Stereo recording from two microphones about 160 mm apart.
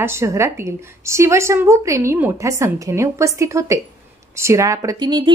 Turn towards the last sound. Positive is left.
turn(degrees=-30)  # may be behind; listen again after turning